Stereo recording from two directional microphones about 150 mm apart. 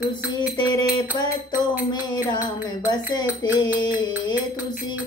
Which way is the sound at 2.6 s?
30° left (ahead or behind).